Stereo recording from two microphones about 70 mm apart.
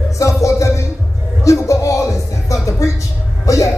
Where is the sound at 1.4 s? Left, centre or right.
Left.